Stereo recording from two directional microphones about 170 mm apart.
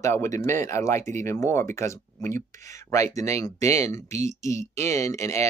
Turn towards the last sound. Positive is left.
turn(degrees=15)  # may be behind; listen again after turning